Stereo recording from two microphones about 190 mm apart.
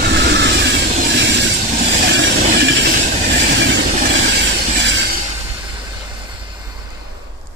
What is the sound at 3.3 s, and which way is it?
Train, 65° right (ahead or behind).